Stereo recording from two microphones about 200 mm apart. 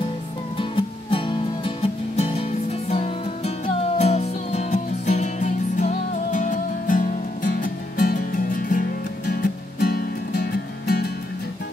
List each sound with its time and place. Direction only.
1.1 s music: 25° left (ahead or behind); by 11.1 s 50° left (ahead or behind)